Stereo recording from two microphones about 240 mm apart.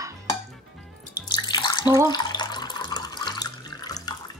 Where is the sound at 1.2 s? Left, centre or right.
Centre.